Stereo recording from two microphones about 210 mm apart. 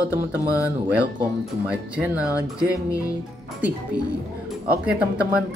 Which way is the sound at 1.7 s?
5° right (ahead or behind).